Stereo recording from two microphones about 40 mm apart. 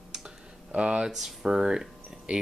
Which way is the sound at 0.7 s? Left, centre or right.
Right.